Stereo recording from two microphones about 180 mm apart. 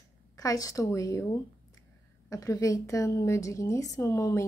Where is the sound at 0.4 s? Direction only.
20° left (ahead or behind).